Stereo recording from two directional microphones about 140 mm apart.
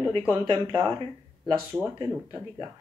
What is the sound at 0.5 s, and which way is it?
Speech, 40° right (ahead or behind).